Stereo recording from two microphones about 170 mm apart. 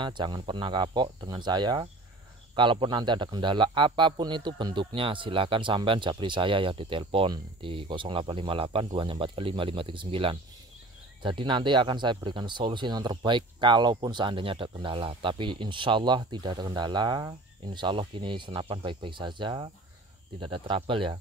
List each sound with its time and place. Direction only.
0.0 s a man's voice: 25° right (ahead or behind)